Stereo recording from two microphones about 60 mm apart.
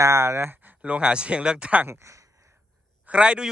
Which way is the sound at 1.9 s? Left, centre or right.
Right.